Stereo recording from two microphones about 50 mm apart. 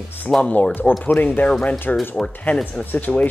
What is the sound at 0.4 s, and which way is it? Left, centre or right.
Speech, left.